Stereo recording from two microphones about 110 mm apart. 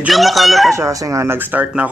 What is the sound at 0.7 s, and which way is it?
Speech, 30° right (ahead or behind).